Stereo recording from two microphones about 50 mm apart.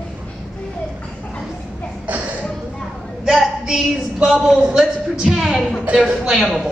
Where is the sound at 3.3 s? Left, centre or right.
Centre.